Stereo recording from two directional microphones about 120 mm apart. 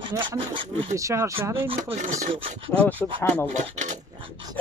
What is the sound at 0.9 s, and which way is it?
Speech, 25° right (ahead or behind).